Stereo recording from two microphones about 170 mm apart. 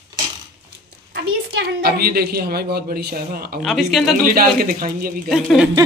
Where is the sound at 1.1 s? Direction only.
70° right (ahead or behind).